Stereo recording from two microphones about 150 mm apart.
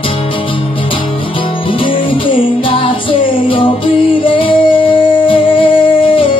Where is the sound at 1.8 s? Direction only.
35° left (ahead or behind).